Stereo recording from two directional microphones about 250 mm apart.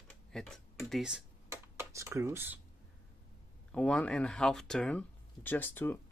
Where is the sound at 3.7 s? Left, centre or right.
Centre.